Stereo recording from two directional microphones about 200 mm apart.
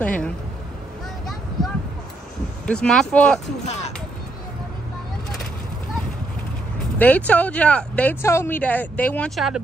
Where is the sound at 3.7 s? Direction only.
35° left (ahead or behind).